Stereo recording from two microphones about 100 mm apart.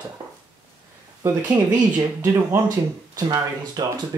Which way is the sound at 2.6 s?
35° right (ahead or behind).